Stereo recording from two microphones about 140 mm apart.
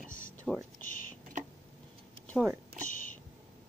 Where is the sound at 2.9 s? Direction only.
70° left (ahead or behind).